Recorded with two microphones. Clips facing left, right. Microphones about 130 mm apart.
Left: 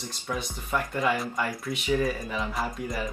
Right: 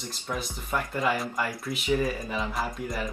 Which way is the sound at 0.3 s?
Centre (ahead or behind).